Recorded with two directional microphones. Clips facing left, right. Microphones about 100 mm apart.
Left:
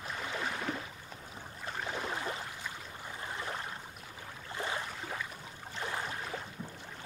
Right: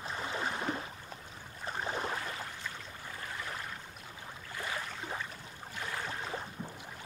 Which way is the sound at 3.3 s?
25° left (ahead or behind).